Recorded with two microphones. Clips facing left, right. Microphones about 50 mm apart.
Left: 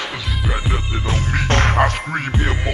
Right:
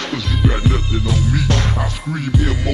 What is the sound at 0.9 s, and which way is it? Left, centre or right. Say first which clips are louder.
Music: right 2 dB; left.